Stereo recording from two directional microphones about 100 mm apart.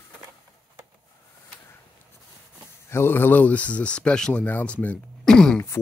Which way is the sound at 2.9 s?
25° left (ahead or behind).